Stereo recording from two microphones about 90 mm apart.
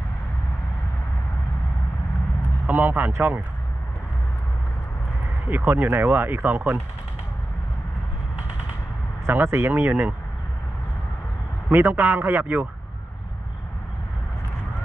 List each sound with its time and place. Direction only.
2.6 s speech: 20° right (ahead or behind)
5.5 s speech: 20° right (ahead or behind)
9.2 s speech: 25° right (ahead or behind)
11.7 s speech: 25° right (ahead or behind)